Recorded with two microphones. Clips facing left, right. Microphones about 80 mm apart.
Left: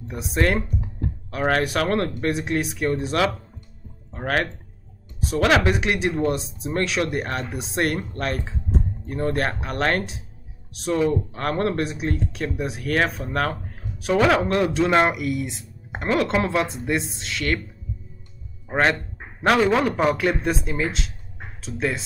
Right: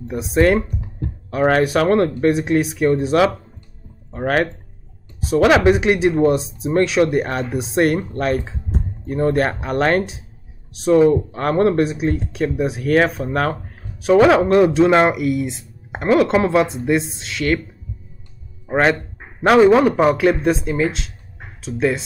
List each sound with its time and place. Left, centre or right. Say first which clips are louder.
0.1 s speech: right 7 dB; centre
18.7 s speech: right 4 dB; centre